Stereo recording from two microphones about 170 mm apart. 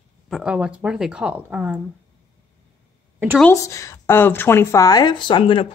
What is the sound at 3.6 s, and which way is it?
Speech, 20° left (ahead or behind).